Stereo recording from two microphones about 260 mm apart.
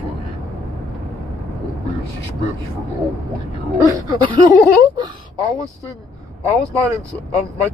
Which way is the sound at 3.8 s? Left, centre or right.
Centre.